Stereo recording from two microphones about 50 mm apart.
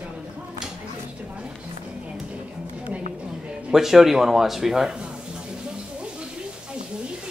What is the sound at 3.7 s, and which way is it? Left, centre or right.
A man's voice, centre.